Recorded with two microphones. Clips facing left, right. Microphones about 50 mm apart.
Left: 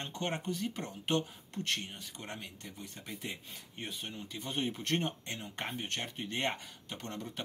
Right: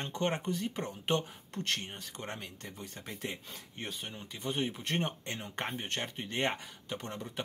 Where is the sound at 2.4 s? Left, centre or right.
Right.